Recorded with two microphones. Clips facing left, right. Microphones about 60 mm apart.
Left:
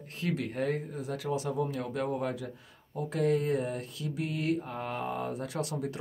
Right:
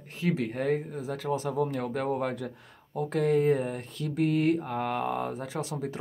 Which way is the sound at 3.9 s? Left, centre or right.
Right.